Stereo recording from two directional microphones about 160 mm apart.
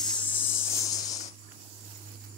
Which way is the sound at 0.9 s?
25° left (ahead or behind).